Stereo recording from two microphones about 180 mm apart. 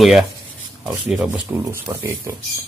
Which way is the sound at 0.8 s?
5° right (ahead or behind).